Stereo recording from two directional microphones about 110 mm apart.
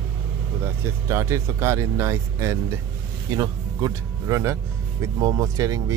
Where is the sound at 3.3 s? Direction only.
35° right (ahead or behind).